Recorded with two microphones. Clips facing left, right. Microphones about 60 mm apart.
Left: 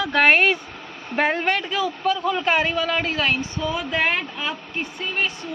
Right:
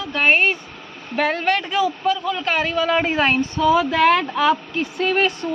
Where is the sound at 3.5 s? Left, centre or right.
Right.